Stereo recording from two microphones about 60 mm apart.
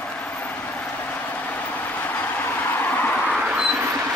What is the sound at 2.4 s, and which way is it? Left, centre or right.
Vehicle, left.